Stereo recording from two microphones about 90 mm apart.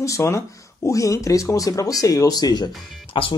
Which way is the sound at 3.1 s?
65° left (ahead or behind).